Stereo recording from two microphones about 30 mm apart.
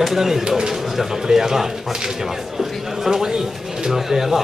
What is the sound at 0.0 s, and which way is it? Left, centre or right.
Speech, centre.